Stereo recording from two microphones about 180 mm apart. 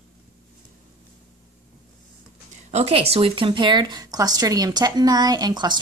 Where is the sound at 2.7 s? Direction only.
35° right (ahead or behind).